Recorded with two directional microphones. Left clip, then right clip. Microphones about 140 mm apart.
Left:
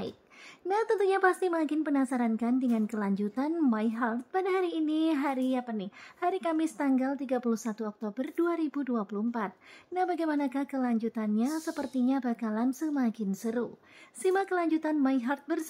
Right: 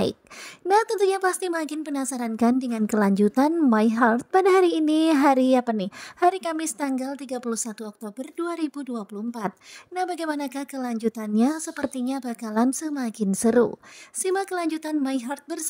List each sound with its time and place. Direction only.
0.7 s a woman's voice: 45° right (ahead or behind)